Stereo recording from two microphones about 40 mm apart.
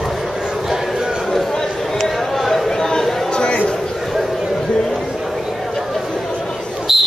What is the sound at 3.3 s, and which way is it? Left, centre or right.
Chatter, left.